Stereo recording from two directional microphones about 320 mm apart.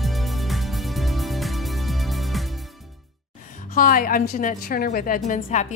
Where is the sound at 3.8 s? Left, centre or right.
Left.